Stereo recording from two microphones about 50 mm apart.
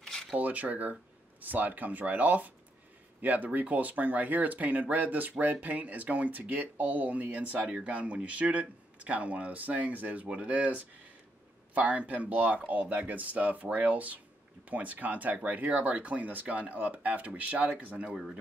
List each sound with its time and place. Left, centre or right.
0.4 s speech: right